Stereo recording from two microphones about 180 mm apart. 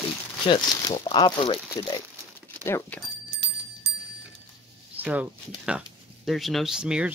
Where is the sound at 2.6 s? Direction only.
10° left (ahead or behind).